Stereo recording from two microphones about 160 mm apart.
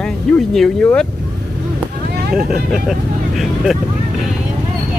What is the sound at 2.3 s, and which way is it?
Speech, 5° right (ahead or behind).